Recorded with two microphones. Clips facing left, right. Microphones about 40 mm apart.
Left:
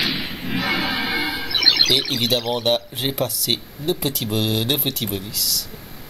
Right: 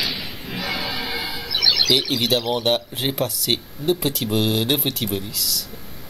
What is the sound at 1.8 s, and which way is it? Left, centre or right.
Speech, centre.